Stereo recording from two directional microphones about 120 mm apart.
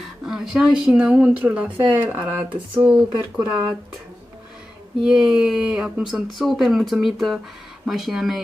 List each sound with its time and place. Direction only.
0.3 s speech: 5° right (ahead or behind)
5.0 s speech: 5° right (ahead or behind)